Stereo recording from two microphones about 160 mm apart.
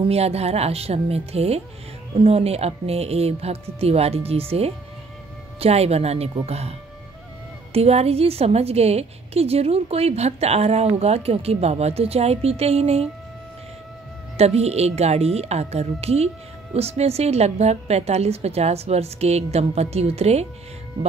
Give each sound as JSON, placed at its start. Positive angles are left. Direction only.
{"t": 0.0, "sound": "a woman's voice", "side_deg": -40}
{"t": 7.7, "sound": "a woman's voice", "side_deg": -40}
{"t": 14.3, "sound": "a woman's voice", "side_deg": -40}